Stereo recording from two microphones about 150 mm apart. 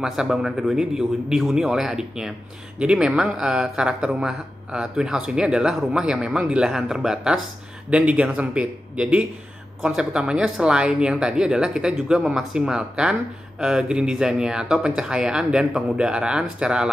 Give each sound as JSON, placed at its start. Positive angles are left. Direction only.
{"t": 0.0, "sound": "a man's voice", "side_deg": -5}